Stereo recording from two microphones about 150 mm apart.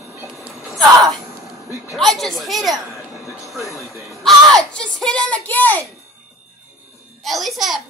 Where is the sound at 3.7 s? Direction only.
Centre (ahead or behind).